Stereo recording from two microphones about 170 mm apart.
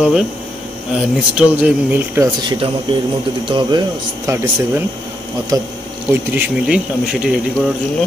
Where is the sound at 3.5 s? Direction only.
25° right (ahead or behind).